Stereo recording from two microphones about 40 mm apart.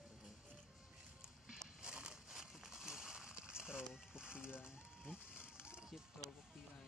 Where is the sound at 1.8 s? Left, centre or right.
Centre.